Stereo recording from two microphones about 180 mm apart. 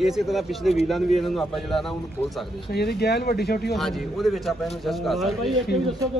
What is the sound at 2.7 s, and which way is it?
Speech, 65° left (ahead or behind).